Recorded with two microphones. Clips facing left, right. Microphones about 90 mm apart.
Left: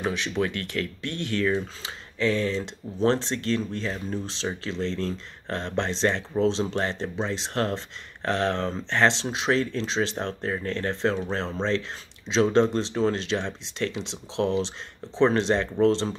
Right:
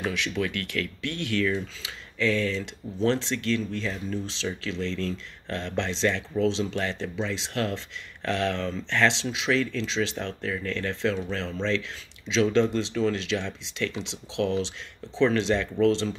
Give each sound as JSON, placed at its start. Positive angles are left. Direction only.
{"t": 0.0, "sound": "speech", "side_deg": 30}